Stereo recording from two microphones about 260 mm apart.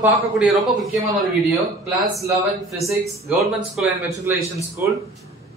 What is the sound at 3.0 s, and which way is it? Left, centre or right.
A man's voice, centre.